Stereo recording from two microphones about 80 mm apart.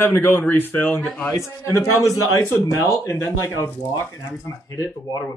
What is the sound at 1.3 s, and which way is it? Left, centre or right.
Speech, left.